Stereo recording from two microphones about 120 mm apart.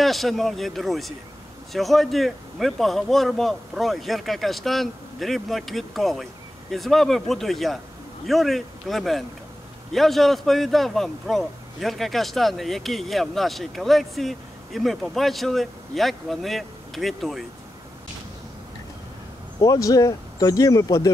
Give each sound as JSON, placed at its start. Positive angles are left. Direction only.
{"t": 0.0, "sound": "a man's voice", "side_deg": 0}
{"t": 19.6, "sound": "speech", "side_deg": 30}